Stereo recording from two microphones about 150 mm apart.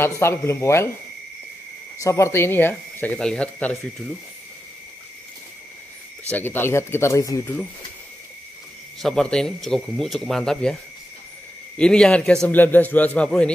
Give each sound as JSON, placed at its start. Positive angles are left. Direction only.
{"t": 0.0, "sound": "a man's voice", "side_deg": 15}
{"t": 2.0, "sound": "a man's voice", "side_deg": 20}
{"t": 6.3, "sound": "a man's voice", "side_deg": 15}
{"t": 9.0, "sound": "a man's voice", "side_deg": 5}